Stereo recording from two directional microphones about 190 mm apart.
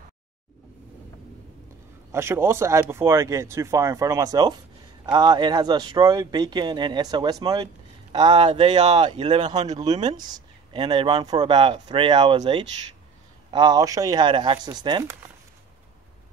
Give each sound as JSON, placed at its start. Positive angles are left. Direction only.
{"t": 2.1, "sound": "speech", "side_deg": -10}
{"t": 10.1, "sound": "speech", "side_deg": -20}